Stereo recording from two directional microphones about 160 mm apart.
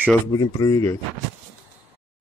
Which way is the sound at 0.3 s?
20° left (ahead or behind).